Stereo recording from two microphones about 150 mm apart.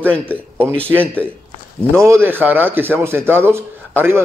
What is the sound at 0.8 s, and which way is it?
A man's voice, 15° right (ahead or behind).